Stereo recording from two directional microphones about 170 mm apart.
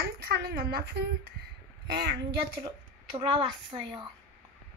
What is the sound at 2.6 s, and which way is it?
A woman's voice, 30° right (ahead or behind).